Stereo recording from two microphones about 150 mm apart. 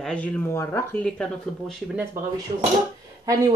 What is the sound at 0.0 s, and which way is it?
Speech, 5° left (ahead or behind).